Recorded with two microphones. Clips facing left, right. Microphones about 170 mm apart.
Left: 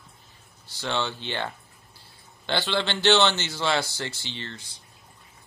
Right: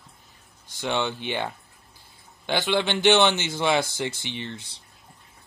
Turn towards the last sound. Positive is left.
turn(degrees=-15)  # may be behind; listen again after turning